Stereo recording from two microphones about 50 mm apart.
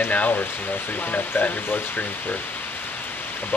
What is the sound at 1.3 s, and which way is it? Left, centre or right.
Speech, left.